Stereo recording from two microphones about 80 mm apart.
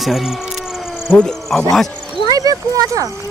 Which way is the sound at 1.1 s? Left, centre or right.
Centre.